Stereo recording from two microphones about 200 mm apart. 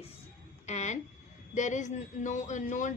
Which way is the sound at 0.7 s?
35° left (ahead or behind).